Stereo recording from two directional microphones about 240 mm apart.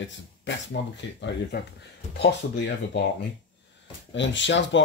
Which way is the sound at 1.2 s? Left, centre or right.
Left.